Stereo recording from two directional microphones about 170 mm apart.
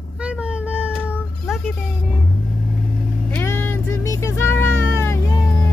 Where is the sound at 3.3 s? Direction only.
15° left (ahead or behind).